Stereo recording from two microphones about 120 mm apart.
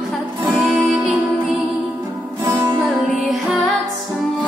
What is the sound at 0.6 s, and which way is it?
Music, 5° right (ahead or behind).